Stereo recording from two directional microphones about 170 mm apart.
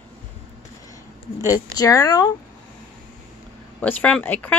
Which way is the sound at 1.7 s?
20° left (ahead or behind).